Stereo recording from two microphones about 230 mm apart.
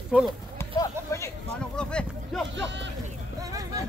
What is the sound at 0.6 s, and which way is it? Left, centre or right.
Speech, centre.